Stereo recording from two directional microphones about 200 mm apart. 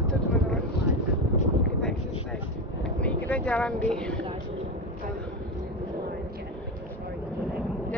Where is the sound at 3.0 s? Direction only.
5° left (ahead or behind).